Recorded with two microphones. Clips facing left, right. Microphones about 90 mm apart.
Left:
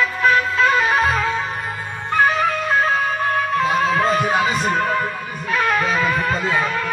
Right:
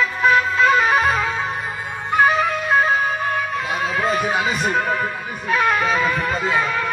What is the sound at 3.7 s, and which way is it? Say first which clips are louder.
Music: left 1 dB; centre (ahead or behind).